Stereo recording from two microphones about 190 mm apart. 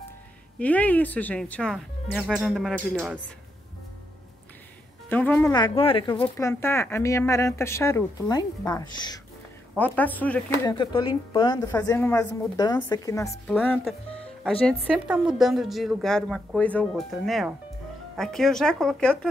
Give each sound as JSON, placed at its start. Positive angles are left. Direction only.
{"t": 0.6, "sound": "a woman's voice", "side_deg": 5}
{"t": 5.1, "sound": "speech", "side_deg": 10}
{"t": 5.5, "sound": "a woman's voice", "side_deg": 25}
{"t": 6.3, "sound": "speech", "side_deg": 15}
{"t": 9.8, "sound": "speech", "side_deg": 10}
{"t": 10.8, "sound": "a woman's voice", "side_deg": 25}
{"t": 13.8, "sound": "music", "side_deg": 5}
{"t": 14.4, "sound": "a woman's voice", "side_deg": -5}